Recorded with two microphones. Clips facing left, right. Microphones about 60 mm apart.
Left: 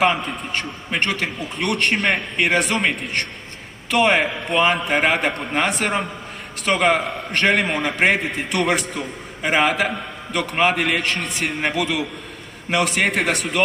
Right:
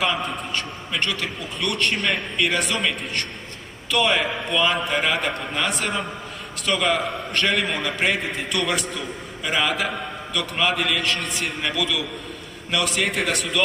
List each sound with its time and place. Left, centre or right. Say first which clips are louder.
0.0 s a man's voice: left 4 dB; left
11.7 s a man's voice: left 3 dB; left